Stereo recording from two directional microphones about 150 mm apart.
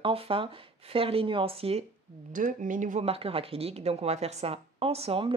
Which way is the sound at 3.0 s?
40° right (ahead or behind).